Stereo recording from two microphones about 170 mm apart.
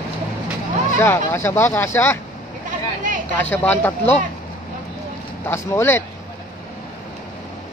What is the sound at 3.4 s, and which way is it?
Speech, 10° left (ahead or behind).